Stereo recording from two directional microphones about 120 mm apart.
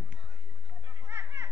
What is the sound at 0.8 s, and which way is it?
Chatter, 35° right (ahead or behind).